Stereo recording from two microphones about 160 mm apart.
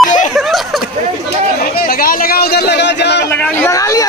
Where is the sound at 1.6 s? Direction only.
65° left (ahead or behind); by 3.2 s 90° left.